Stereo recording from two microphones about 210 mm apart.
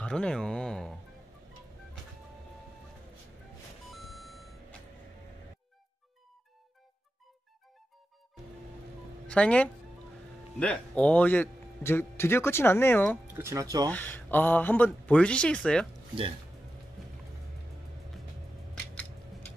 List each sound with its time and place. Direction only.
0.0 s speech: 5° left (ahead or behind)
3.9 s beep: centre (ahead or behind)
9.3 s a man's voice: 5° left (ahead or behind)
13.4 s speech: 15° right (ahead or behind)
13.8 s a man's voice: 10° left (ahead or behind)